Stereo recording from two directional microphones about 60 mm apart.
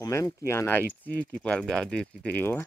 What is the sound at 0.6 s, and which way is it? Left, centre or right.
Speech, left.